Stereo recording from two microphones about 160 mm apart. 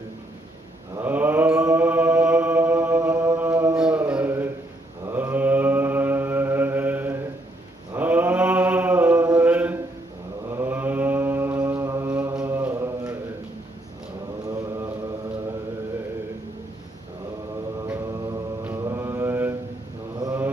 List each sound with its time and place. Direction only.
0.9 s mantra: 10° right (ahead or behind)
7.9 s a sound: 10° right (ahead or behind)
9.4 s music: 10° right (ahead or behind)
10.5 s mantra: 15° right (ahead or behind)
14.4 s mantra: 20° right (ahead or behind)
17.8 s mantra: 15° right (ahead or behind)